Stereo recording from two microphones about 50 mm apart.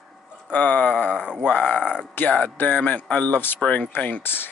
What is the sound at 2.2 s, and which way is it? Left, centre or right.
Speech, left.